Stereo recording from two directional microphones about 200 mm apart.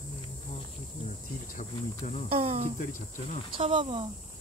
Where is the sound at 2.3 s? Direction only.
30° right (ahead or behind).